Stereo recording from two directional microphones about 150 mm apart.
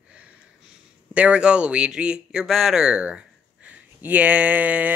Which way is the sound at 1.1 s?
10° right (ahead or behind).